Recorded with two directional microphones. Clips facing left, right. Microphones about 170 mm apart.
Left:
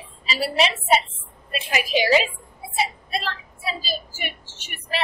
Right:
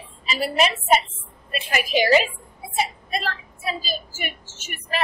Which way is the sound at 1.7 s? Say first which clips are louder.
Right 1 dB; 50° right (ahead or behind).